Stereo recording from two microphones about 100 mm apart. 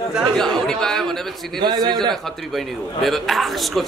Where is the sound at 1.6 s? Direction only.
45° right (ahead or behind).